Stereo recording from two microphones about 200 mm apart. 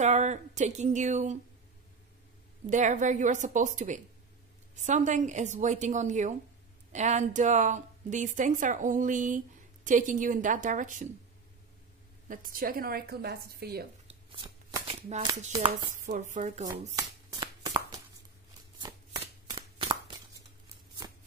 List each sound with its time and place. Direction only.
0.0 s a woman's voice: 35° right (ahead or behind)
2.6 s a woman's voice: 40° right (ahead or behind)
12.3 s a woman's voice: 45° right (ahead or behind)
14.0 s speech: 25° right (ahead or behind)
16.9 s shuffling cards: 20° right (ahead or behind)